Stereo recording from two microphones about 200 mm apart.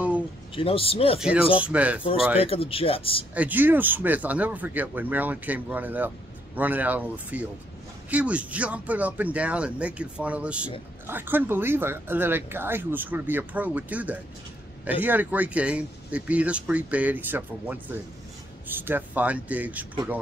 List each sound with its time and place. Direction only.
0.6 s speech: 30° left (ahead or behind)
1.2 s speech: 5° right (ahead or behind)
2.4 s speech: 30° left (ahead or behind)
3.3 s speech: 10° right (ahead or behind)